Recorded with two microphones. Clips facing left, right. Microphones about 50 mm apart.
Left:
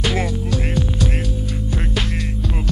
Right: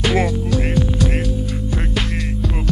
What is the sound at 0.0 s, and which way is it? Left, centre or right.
Music, right.